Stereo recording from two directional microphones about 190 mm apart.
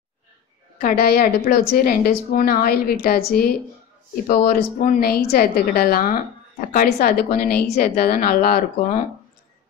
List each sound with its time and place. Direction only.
0.9 s a woman's voice: 55° left (ahead or behind)